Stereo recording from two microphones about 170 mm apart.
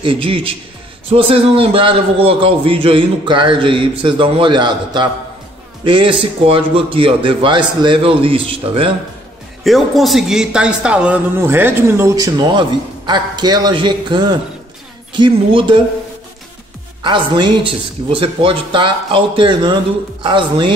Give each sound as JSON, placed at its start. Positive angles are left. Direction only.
{"t": 0.0, "sound": "a man's voice", "side_deg": -30}
{"t": 9.6, "sound": "a man's voice", "side_deg": 0}
{"t": 17.0, "sound": "speech", "side_deg": -25}